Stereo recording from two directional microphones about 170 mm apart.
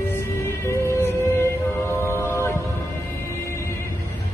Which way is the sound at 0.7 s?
15° left (ahead or behind).